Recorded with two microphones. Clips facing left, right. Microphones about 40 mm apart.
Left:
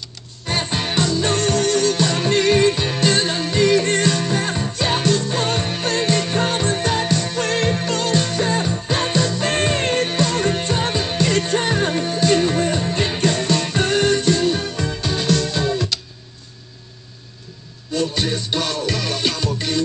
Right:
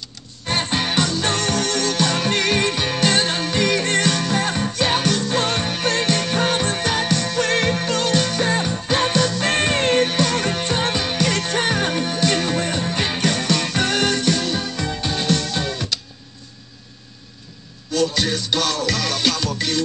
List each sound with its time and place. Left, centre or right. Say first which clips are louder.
0.5 s music: right 1 dB; right
12.1 s music: left 3 dB; right
18.5 s music: right 1 dB; right